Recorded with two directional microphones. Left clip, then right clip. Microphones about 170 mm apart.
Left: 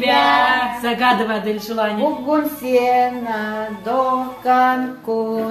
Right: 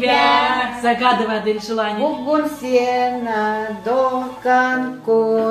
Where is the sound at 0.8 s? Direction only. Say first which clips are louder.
Right 2 dB; 55° left (ahead or behind).